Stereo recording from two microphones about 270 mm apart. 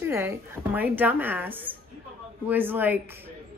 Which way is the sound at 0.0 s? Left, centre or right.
Centre.